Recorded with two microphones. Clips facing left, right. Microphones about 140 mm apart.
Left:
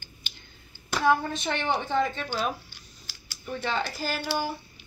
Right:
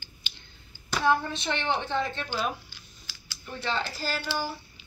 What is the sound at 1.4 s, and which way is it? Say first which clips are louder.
Speech: left 1 dB; 10° left (ahead or behind).